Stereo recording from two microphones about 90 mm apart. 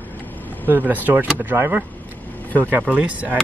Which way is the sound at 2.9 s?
15° right (ahead or behind).